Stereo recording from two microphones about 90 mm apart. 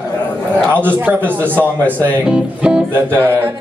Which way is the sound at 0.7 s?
20° right (ahead or behind).